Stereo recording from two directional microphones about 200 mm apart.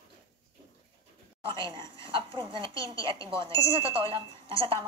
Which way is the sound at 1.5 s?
25° right (ahead or behind).